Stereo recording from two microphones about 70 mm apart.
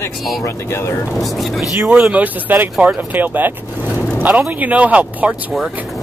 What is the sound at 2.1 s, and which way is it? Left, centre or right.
Speech, right.